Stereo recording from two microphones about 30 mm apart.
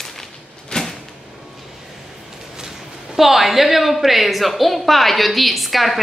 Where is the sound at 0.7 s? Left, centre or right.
Left.